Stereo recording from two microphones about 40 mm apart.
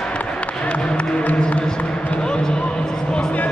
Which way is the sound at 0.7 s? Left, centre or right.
Left.